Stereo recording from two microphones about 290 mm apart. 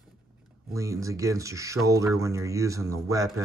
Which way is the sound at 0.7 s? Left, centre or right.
Centre.